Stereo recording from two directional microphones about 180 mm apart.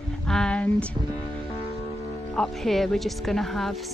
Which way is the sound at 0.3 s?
5° left (ahead or behind).